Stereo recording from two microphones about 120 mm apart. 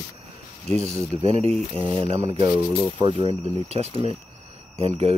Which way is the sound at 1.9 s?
45° right (ahead or behind).